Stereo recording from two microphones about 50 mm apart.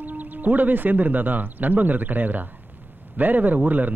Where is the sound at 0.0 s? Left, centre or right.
Right.